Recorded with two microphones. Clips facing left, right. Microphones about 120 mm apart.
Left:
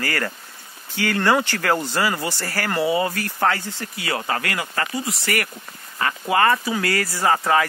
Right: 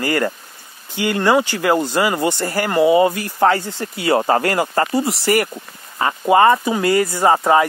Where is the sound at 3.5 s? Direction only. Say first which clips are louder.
Right 6 dB; 30° right (ahead or behind).